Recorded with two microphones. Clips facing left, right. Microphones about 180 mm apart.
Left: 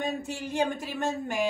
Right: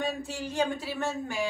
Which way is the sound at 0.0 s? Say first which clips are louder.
Left 1 dB; 20° left (ahead or behind).